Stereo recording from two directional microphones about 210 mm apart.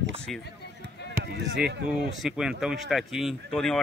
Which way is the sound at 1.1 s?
50° right (ahead or behind).